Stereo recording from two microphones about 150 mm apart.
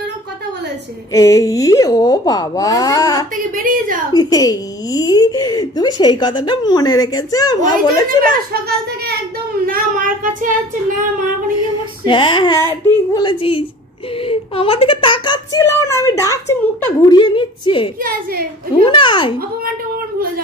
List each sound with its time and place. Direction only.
1.1 s speech: 20° left (ahead or behind)
3.5 s a woman's voice: 65° right (ahead or behind)
4.1 s speech: 25° left (ahead or behind)
8.2 s a child's voice: 90° right
9.7 s child singing: 65° right (ahead or behind)
12.0 s a woman's voice: 35° left (ahead or behind)
12.6 s a woman's voice: 20° left (ahead or behind)
17.2 s a woman's voice: 35° left (ahead or behind)
18.0 s a woman's voice: 80° right
18.9 s a woman's voice: 35° left (ahead or behind)